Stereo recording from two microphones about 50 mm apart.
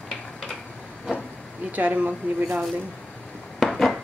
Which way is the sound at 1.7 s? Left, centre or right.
Right.